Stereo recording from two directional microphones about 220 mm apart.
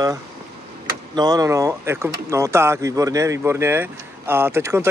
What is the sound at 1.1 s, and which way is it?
Speech, 15° right (ahead or behind).